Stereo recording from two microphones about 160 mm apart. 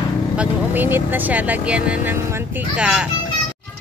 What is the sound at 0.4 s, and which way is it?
Speech, 10° right (ahead or behind).